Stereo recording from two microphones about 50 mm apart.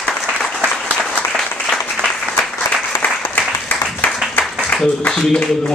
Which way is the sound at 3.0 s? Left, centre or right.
Left.